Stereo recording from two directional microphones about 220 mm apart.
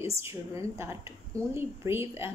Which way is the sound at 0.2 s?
10° right (ahead or behind).